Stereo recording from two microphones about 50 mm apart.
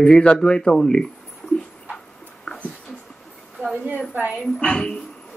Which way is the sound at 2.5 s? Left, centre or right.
Left.